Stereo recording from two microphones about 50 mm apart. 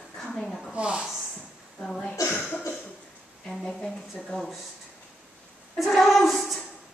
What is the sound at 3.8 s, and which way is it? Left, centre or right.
Speech, centre.